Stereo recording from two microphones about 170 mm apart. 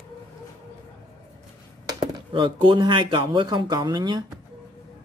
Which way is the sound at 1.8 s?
25° right (ahead or behind).